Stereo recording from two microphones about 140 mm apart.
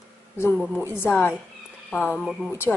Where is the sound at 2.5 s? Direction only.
15° left (ahead or behind).